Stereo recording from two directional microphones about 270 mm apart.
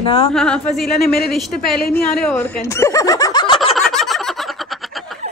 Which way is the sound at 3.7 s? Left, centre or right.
Centre.